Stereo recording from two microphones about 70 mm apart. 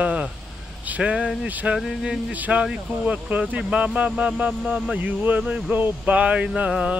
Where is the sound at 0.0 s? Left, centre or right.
Centre.